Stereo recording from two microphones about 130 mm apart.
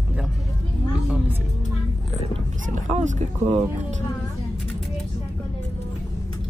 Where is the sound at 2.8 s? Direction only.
70° right (ahead or behind).